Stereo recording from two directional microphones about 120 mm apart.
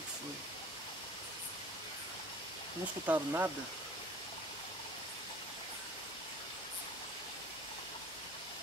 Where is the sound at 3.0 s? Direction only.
15° right (ahead or behind).